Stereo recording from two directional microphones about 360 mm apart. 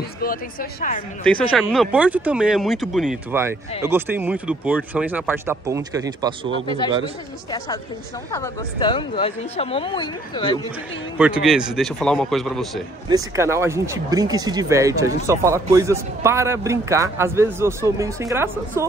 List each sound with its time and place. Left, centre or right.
0.2 s a woman's voice: left
1.6 s speech: centre
7.5 s speech: centre
11.4 s speech: centre